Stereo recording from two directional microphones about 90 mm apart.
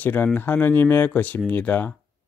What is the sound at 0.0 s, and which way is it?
Speech, 20° left (ahead or behind).